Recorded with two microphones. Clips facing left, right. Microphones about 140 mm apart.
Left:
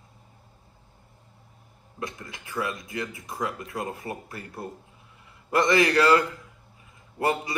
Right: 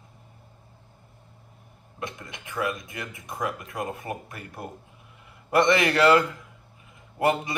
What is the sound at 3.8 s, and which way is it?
A man's voice, 20° right (ahead or behind).